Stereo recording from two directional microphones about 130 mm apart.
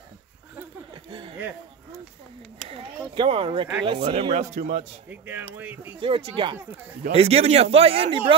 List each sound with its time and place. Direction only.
0.9 s a sound: 35° right (ahead or behind)
2.7 s a sound: 45° right (ahead or behind)
3.8 s speech: 45° right (ahead or behind); by 4.8 s 60° right (ahead or behind)
5.1 s speech: 15° right (ahead or behind)
5.9 s speech: 40° right (ahead or behind)
7.1 s speech: 50° right (ahead or behind)